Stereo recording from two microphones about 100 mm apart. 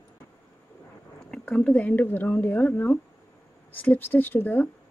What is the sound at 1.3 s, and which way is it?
A woman's voice, 10° left (ahead or behind).